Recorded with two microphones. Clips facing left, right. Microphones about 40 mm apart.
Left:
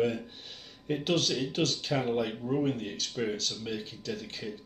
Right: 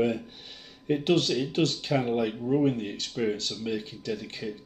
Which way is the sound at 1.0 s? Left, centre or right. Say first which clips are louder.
Right 4 dB; centre.